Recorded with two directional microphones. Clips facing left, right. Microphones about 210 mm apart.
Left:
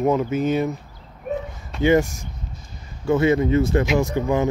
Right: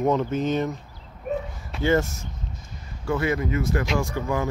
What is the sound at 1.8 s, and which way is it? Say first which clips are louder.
Speech: left 4 dB; 15° left (ahead or behind).